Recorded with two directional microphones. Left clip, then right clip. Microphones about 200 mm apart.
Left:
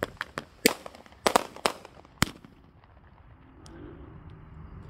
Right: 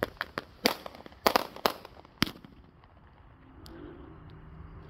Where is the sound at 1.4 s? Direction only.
15° right (ahead or behind).